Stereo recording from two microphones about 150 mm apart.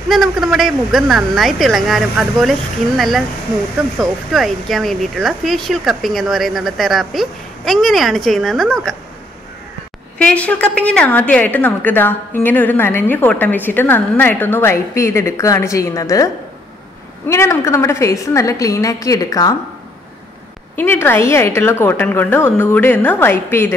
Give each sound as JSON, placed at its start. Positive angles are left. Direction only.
{"t": 0.1, "sound": "speech", "side_deg": 0}
{"t": 10.1, "sound": "a woman's voice", "side_deg": 10}
{"t": 17.3, "sound": "a woman's voice", "side_deg": 20}
{"t": 20.7, "sound": "a woman's voice", "side_deg": 15}